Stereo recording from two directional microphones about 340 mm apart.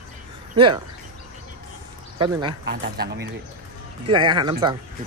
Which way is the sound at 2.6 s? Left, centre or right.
Right.